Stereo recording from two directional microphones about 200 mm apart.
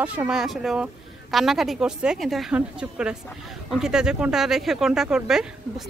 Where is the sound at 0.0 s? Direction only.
5° right (ahead or behind).